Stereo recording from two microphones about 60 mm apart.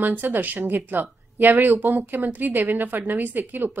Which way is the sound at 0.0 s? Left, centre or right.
Right.